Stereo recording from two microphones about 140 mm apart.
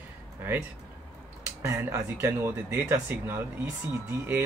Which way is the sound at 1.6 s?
20° right (ahead or behind).